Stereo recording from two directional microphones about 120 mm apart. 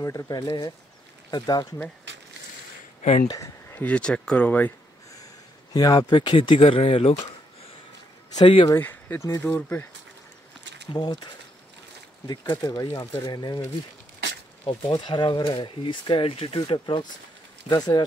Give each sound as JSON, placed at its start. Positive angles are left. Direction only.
{"t": 0.0, "sound": "speech", "side_deg": 25}
{"t": 3.0, "sound": "speech", "side_deg": 70}
{"t": 3.7, "sound": "speech", "side_deg": 10}
{"t": 5.1, "sound": "speech", "side_deg": 30}
{"t": 8.4, "sound": "speech", "side_deg": 45}
{"t": 8.7, "sound": "speech", "side_deg": 20}
{"t": 10.9, "sound": "speech", "side_deg": 35}
{"t": 12.3, "sound": "speech", "side_deg": 35}
{"t": 12.9, "sound": "speech", "side_deg": 25}
{"t": 14.9, "sound": "speech", "side_deg": 40}